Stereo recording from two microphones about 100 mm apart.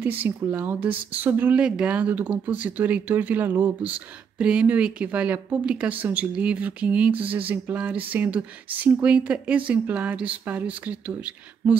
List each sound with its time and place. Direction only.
0.0 s speech: 20° right (ahead or behind)